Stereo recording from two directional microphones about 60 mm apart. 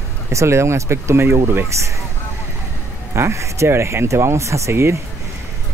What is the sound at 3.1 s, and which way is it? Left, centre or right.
Speech, right.